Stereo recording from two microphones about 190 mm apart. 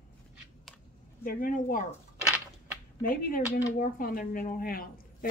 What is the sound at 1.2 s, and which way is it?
Speech, 45° left (ahead or behind).